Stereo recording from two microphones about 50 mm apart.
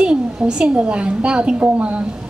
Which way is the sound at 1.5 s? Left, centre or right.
Right.